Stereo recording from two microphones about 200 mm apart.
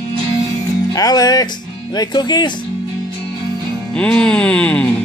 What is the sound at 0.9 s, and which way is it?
Speech, 20° left (ahead or behind).